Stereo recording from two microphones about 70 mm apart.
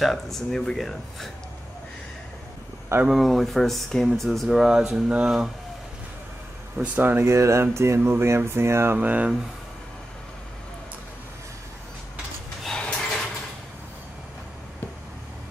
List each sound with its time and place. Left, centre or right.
0.0 s speech: centre
3.1 s speech: centre
7.0 s speech: right
7.2 s music: right
7.6 s speech: right
8.9 s speech: right
12.6 s a sound: centre